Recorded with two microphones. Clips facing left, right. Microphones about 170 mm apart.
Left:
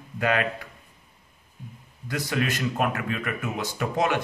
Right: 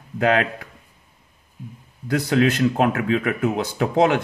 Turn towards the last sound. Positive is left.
turn(degrees=-65)  # may be behind; listen again after turning